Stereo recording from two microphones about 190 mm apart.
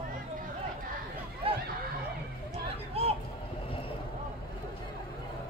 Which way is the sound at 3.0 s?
30° right (ahead or behind).